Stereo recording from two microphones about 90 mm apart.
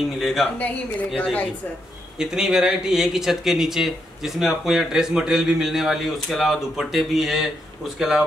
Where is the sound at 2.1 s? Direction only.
5° right (ahead or behind).